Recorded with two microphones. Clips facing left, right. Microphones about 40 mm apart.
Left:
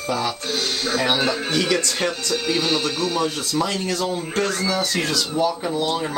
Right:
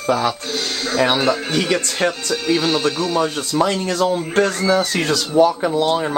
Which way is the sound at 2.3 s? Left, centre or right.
Centre.